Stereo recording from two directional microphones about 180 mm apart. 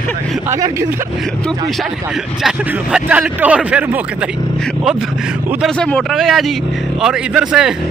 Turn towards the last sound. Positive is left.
turn(degrees=-5)  # may be behind; listen again after turning